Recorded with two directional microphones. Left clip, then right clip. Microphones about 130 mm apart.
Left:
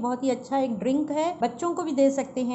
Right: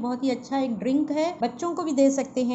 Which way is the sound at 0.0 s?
10° left (ahead or behind).